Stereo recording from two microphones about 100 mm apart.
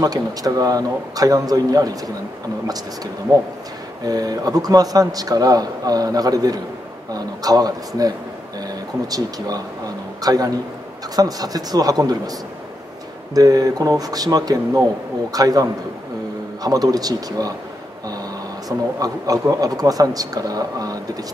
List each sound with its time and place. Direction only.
0.0 s a man's voice: 40° right (ahead or behind)
3.3 s a man's voice: 40° right (ahead or behind)
16.6 s a man's voice: 40° right (ahead or behind)
18.7 s a man's voice: 40° right (ahead or behind)